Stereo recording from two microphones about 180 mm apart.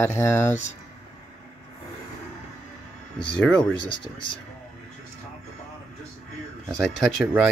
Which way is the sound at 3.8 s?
25° left (ahead or behind).